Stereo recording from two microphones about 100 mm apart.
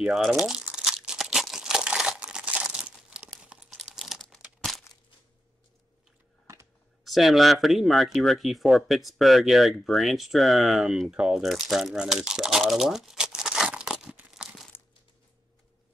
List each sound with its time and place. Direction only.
0.0 s speech: 5° right (ahead or behind)
0.4 s crumpling: 5° right (ahead or behind)
3.9 s typing: centre (ahead or behind)
4.6 s crumpling: centre (ahead or behind)
6.4 s a sound: 30° right (ahead or behind)
7.1 s speech: centre (ahead or behind)
11.4 s crumpling: centre (ahead or behind)